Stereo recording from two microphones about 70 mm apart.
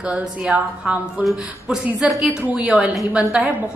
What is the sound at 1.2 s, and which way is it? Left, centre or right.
A woman's voice, centre.